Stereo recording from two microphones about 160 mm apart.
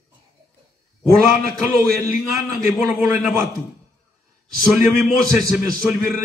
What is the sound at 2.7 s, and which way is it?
Speech, centre (ahead or behind).